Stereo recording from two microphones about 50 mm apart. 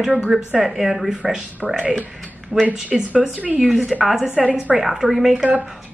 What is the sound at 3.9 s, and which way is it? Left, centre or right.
Speech, centre.